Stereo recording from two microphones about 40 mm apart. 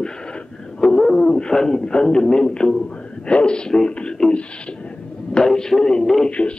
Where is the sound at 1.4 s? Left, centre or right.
Centre.